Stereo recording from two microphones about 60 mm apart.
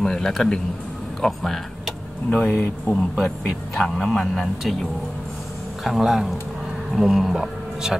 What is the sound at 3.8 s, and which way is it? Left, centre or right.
Speech, centre.